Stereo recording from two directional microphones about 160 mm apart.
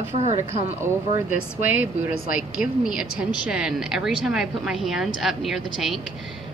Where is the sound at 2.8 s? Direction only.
5° right (ahead or behind).